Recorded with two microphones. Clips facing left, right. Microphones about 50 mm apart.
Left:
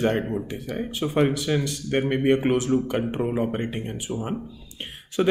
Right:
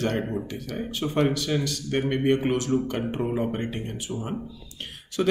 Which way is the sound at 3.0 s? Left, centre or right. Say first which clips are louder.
Left 2 dB; centre.